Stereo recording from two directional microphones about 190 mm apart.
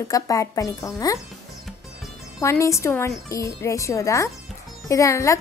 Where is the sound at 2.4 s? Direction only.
15° left (ahead or behind).